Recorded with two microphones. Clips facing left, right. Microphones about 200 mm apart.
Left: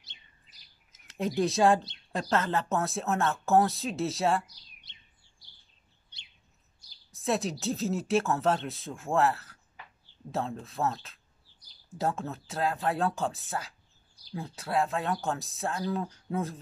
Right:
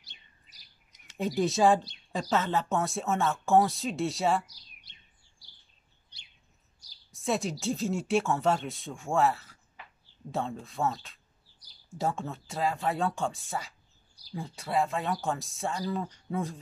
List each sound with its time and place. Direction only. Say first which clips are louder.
0.9 s speech: even; centre (ahead or behind)
4.9 s chirp: even; 25° left (ahead or behind)
7.1 s speech: left 1 dB; centre (ahead or behind)